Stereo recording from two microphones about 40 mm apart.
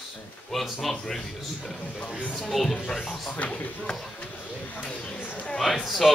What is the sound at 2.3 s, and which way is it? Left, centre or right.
Speech, centre.